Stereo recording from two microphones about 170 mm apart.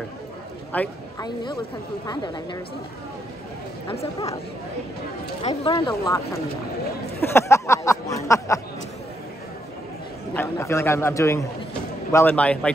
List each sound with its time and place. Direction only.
0.7 s a man's voice: 10° left (ahead or behind)
1.2 s speech: 25° left (ahead or behind)
5.4 s speech: 35° left (ahead or behind); by 6.4 s 20° left (ahead or behind)
7.2 s a sound: 15° left (ahead or behind)
10.3 s a man's voice: 15° left (ahead or behind)